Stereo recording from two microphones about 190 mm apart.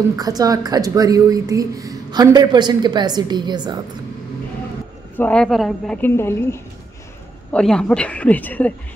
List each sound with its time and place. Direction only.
0.1 s speech: 20° right (ahead or behind)
5.1 s a woman's voice: 5° left (ahead or behind)